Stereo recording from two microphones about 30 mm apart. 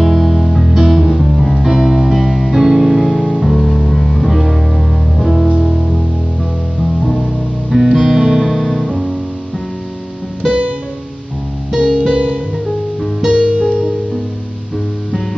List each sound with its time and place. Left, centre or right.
0.0 s music: centre
4.3 s music: centre
7.7 s music: centre
8.6 s music: centre
11.7 s music: right